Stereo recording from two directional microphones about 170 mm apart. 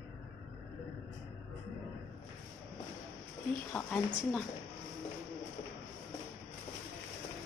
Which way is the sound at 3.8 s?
5° left (ahead or behind).